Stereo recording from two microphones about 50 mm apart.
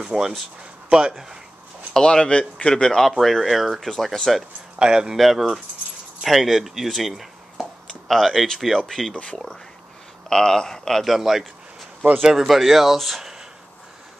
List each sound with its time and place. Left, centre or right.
0.0 s speech: centre
2.0 s speech: centre
4.7 s a man's voice: centre
5.1 s speech: centre
9.1 s speech: left
10.3 s speech: centre
11.1 s speech: centre